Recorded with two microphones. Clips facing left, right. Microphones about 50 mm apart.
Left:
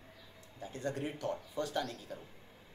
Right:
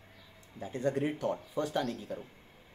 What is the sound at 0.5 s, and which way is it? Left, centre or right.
Speech, right.